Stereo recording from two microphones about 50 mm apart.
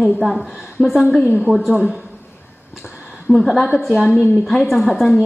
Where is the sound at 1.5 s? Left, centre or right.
Centre.